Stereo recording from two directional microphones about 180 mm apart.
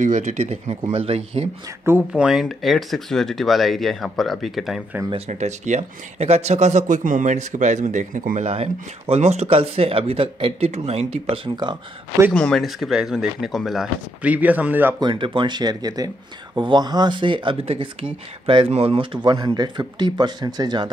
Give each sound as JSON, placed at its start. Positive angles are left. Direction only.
{"t": 0.0, "sound": "speech", "side_deg": -40}
{"t": 1.9, "sound": "speech", "side_deg": -10}
{"t": 5.1, "sound": "speech", "side_deg": -40}
{"t": 8.5, "sound": "speech", "side_deg": -35}
{"t": 12.3, "sound": "speech", "side_deg": 5}
{"t": 15.0, "sound": "speech", "side_deg": -25}